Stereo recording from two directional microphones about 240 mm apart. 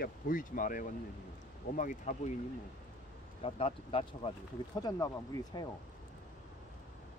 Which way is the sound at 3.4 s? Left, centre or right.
Left.